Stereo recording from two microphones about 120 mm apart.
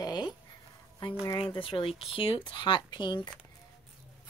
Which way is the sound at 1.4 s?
45° left (ahead or behind).